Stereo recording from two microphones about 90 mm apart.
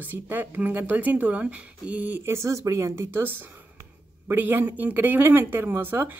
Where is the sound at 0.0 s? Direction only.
20° right (ahead or behind).